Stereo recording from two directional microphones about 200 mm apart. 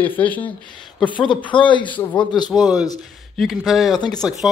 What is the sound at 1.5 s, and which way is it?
Speech, 25° left (ahead or behind).